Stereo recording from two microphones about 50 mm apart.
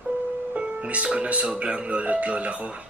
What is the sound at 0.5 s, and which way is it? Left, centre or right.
Speech, right.